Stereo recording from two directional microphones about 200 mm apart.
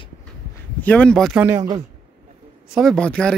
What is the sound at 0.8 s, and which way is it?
Speech, 5° left (ahead or behind).